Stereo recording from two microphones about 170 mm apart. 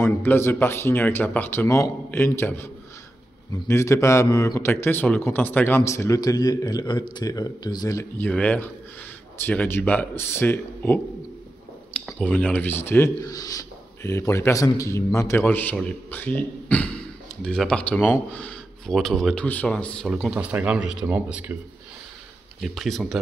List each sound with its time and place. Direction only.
0.0 s a man's voice: 15° left (ahead or behind); by 21.5 s 10° right (ahead or behind)
22.6 s speech: centre (ahead or behind)